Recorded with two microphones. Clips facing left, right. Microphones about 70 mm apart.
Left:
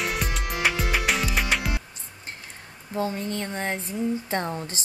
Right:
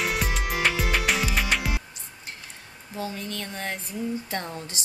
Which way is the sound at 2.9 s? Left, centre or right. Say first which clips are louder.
Left 5 dB; left.